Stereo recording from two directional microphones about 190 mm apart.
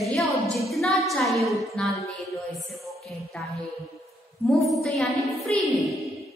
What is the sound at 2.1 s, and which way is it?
Music, centre (ahead or behind).